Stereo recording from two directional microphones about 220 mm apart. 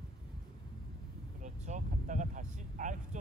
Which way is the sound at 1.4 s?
35° right (ahead or behind).